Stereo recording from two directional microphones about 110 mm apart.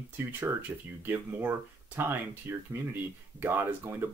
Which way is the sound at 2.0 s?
20° right (ahead or behind).